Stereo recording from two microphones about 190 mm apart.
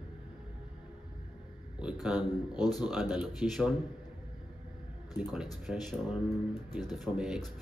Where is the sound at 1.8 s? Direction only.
Centre (ahead or behind).